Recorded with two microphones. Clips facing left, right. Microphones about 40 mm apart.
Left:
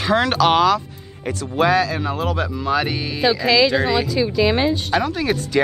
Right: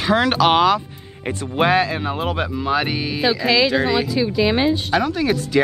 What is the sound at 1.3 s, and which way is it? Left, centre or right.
Speech, right.